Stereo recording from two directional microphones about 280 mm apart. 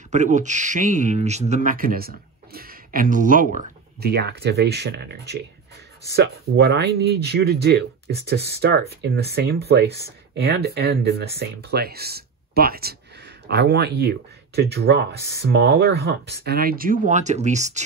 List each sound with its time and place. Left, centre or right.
0.1 s speech: right